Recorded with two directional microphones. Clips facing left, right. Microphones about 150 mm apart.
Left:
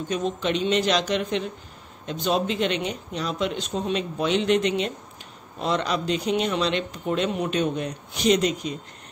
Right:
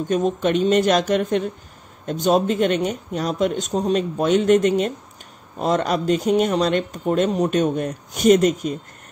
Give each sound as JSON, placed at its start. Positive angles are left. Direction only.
{"t": 0.1, "sound": "speech", "side_deg": -50}